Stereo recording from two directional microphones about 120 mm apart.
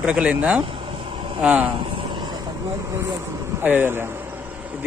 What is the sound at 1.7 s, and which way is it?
Vehicle, 45° right (ahead or behind).